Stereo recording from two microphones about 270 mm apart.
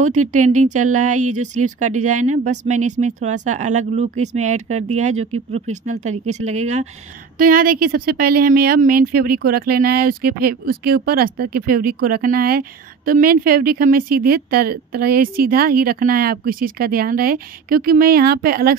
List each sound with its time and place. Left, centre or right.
0.0 s speech: right